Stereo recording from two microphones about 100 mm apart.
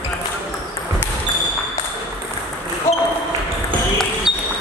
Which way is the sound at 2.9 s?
25° left (ahead or behind).